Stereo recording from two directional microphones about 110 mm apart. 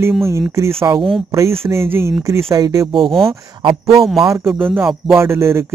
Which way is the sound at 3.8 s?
Centre (ahead or behind).